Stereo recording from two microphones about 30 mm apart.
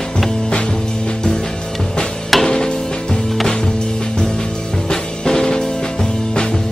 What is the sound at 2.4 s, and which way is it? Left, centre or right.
Music, left.